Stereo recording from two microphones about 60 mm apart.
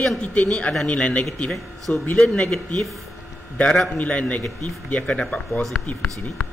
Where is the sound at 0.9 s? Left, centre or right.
Left.